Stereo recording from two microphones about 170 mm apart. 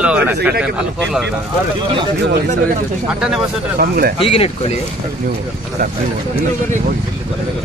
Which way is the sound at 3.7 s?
60° right (ahead or behind).